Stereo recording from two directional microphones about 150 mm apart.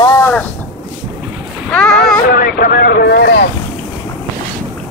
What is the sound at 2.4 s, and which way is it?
Speech, 70° left (ahead or behind).